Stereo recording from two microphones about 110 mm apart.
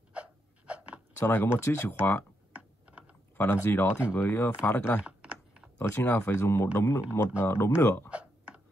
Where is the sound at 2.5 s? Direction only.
10° right (ahead or behind).